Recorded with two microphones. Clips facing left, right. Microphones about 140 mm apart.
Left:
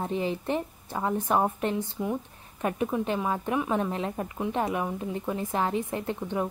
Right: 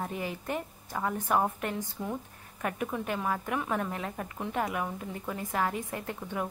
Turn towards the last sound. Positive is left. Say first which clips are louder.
# left 5 dB
turn(degrees=25)  # may be behind; listen again after turning